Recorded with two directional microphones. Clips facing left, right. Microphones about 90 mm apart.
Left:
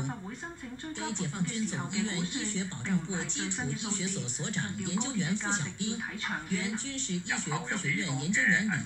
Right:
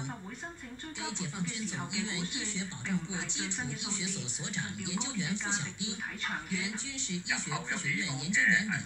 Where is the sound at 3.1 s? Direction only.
40° left (ahead or behind).